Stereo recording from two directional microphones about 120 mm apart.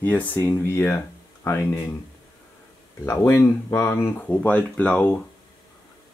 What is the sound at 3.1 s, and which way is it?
Speech, 20° left (ahead or behind).